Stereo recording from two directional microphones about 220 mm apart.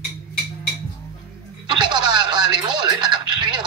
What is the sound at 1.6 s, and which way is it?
Speech, 20° right (ahead or behind).